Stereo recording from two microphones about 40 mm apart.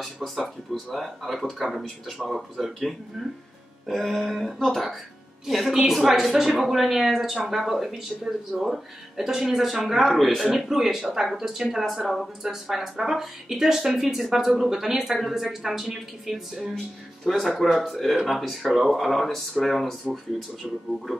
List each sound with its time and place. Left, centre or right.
0.0 s a woman's voice: centre
10.4 s a woman's voice: centre